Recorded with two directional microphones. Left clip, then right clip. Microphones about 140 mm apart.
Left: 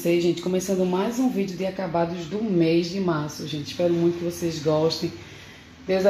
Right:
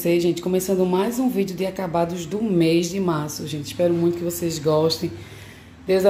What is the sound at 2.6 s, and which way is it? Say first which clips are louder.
Speech: right 2 dB; 15° right (ahead or behind).